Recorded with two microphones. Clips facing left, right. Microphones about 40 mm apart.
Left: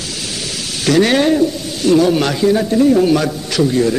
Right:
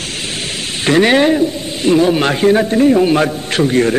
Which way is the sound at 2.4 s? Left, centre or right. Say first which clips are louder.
Right 2 dB; right.